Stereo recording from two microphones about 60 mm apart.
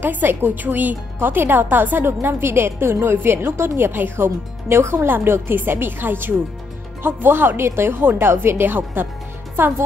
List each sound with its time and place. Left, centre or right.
0.0 s speech: right